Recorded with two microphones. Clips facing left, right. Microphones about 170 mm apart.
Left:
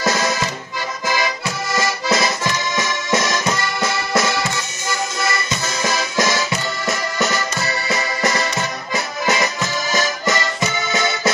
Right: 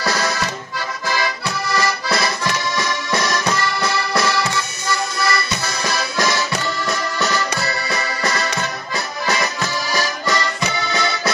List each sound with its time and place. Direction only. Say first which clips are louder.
0.0 s accordion: left 2 dB; 20° left (ahead or behind)
4.8 s music: right 1 dB; 20° left (ahead or behind)
10.9 s accordion: left 1 dB; 20° left (ahead or behind)